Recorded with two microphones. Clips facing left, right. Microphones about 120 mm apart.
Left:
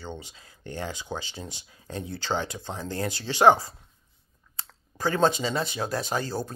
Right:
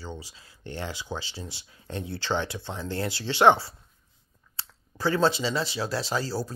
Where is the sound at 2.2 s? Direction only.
40° left (ahead or behind).